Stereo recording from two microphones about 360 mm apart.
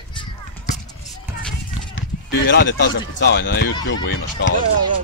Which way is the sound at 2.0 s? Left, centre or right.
Left.